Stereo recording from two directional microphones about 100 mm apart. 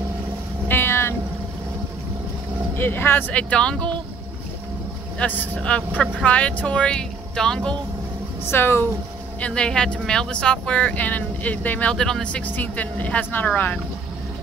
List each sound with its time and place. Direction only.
0.7 s boat: 25° left (ahead or behind)
2.7 s speech: 20° left (ahead or behind)
5.2 s speech: 15° left (ahead or behind)
8.5 s speech: 25° left (ahead or behind)
9.4 s speech: 10° left (ahead or behind)